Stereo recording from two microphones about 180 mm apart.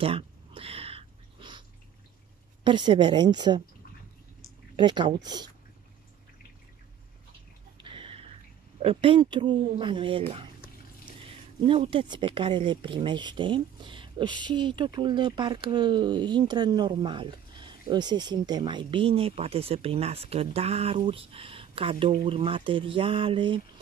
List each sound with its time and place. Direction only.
0.0 s a sound: 30° right (ahead or behind)
2.6 s speech: 25° right (ahead or behind)
4.7 s speech: 25° right (ahead or behind)
7.8 s a sound: 30° right (ahead or behind)
8.7 s speech: 30° right (ahead or behind)
11.6 s speech: 30° right (ahead or behind)